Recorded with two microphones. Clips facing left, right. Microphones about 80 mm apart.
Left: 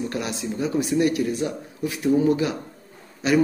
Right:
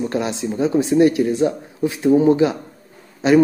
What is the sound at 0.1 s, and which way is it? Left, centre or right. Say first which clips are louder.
Speech: right 6 dB; right.